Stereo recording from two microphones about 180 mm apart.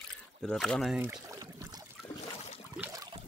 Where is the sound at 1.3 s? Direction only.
20° right (ahead or behind).